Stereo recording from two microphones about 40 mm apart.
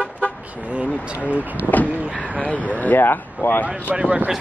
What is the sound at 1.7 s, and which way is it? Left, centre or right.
Vehicle, left.